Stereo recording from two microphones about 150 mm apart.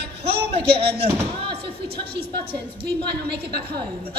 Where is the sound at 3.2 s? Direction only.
90° right.